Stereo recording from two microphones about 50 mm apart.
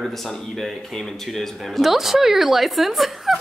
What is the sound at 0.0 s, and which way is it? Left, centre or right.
Speech, centre.